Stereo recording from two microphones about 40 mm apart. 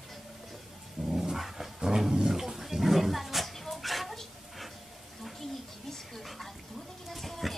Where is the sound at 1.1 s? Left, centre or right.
Centre.